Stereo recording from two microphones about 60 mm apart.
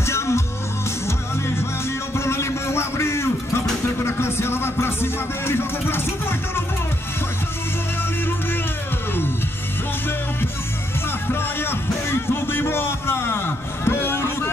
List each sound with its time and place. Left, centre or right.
0.0 s music: left
2.1 s music: left
11.2 s music: left